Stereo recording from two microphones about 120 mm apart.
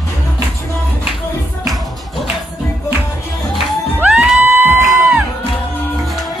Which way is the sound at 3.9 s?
15° right (ahead or behind).